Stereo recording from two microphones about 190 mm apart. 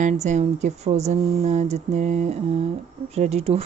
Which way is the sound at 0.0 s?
40° right (ahead or behind).